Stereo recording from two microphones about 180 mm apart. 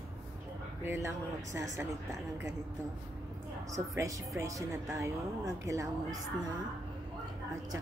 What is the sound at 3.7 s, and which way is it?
A woman's voice, 15° right (ahead or behind).